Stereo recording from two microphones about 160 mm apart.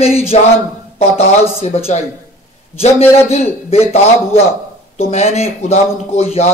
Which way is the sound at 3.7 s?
40° left (ahead or behind).